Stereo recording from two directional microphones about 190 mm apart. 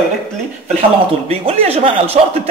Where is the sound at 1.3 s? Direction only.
30° right (ahead or behind).